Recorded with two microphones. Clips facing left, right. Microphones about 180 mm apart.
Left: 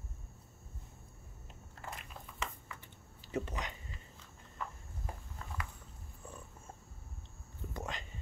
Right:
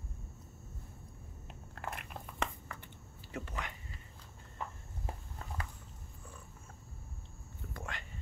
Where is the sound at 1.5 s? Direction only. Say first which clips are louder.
Right 4 dB; 65° right (ahead or behind).